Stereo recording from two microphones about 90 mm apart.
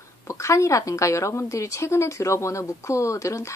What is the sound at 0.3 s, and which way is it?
Speech, 35° left (ahead or behind).